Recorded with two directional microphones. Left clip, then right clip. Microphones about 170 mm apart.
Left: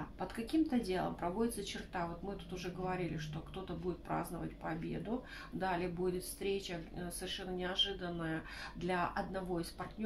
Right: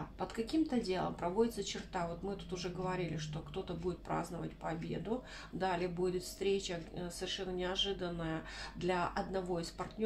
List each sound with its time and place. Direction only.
0.2 s speech: 25° right (ahead or behind)